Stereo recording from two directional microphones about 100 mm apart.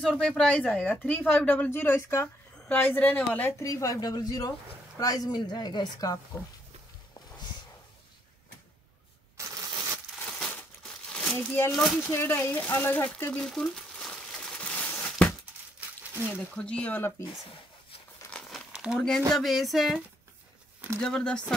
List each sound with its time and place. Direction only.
0.0 s speech: 5° left (ahead or behind)
3.5 s a woman's voice: 30° left (ahead or behind)
10.2 s crumpling: 15° left (ahead or behind)
11.4 s speech: 20° left (ahead or behind)
11.7 s speech: 5° left (ahead or behind)
12.1 s speech: 25° left (ahead or behind)
13.4 s crumpling: 5° left (ahead or behind)
16.3 s speech: 10° left (ahead or behind)
17.3 s a sound: 65° left (ahead or behind)
18.4 s crumpling: 5° right (ahead or behind)
18.9 s speech: 5° left (ahead or behind)
21.0 s speech: 10° left (ahead or behind)